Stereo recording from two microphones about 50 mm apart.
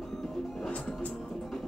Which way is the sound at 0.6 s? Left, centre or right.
Left.